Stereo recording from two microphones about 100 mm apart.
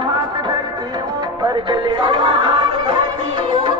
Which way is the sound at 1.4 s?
50° right (ahead or behind).